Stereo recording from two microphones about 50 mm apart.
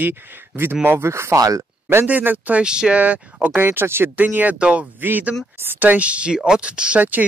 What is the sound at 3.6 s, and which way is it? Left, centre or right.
Speech, right.